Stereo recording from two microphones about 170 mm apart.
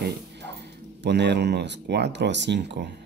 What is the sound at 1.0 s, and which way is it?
Speech, 90° right.